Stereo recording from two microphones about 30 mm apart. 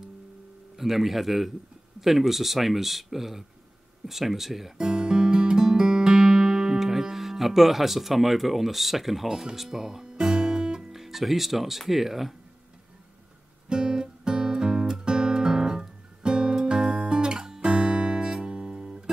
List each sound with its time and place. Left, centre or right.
0.7 s speech: centre
4.7 s music: right
10.9 s speech: centre
13.7 s music: right
17.1 s guitar: right
18.4 s music: right